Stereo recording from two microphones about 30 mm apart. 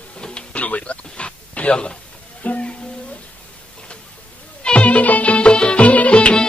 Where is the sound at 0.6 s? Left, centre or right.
Left.